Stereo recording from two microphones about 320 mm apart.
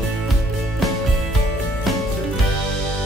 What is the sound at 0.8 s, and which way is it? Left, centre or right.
Music, centre.